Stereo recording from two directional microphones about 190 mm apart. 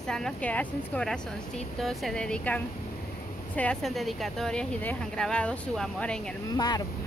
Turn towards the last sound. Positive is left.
turn(degrees=20)  # may be behind; listen again after turning